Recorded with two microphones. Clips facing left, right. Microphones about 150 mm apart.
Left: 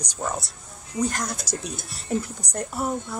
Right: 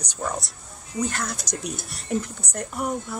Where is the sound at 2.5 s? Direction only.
30° left (ahead or behind).